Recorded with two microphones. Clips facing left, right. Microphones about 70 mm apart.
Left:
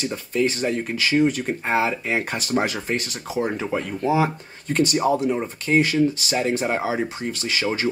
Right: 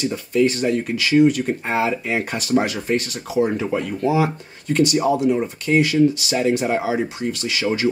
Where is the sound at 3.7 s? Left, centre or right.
Left.